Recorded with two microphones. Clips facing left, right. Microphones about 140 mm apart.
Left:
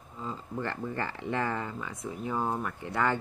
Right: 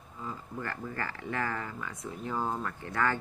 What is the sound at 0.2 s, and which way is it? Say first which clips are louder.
Speech: left 3 dB; 25° left (ahead or behind).